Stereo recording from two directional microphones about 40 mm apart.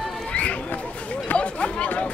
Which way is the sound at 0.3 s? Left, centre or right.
Left.